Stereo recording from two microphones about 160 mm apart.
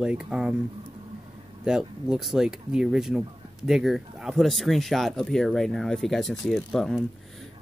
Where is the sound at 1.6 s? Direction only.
5° right (ahead or behind).